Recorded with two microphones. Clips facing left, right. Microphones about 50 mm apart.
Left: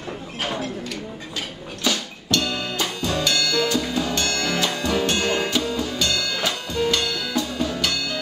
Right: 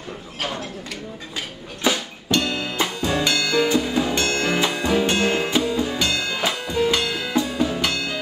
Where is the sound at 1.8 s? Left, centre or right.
Centre.